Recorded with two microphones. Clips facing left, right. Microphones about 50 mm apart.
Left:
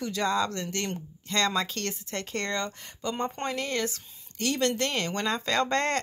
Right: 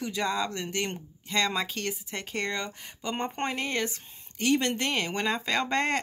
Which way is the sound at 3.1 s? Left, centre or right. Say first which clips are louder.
Even; right.